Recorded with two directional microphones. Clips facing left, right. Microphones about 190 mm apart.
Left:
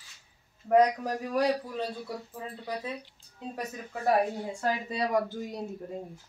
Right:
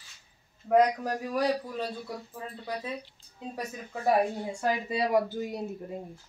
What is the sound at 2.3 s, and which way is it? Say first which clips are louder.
Speech: right 1 dB; 5° left (ahead or behind).